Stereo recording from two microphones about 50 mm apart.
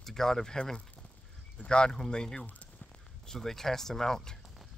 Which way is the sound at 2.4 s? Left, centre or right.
Left.